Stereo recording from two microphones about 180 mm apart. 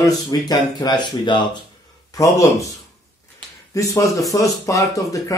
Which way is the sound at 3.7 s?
15° left (ahead or behind).